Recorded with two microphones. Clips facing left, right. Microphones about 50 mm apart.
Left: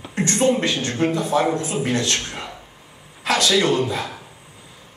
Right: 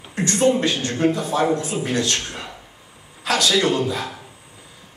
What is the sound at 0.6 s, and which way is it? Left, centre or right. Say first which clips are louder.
A man's voice: even; left.